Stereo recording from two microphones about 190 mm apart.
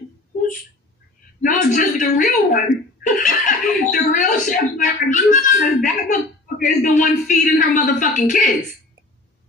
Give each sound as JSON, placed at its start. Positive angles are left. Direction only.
{"t": 1.4, "sound": "a woman's voice", "side_deg": 40}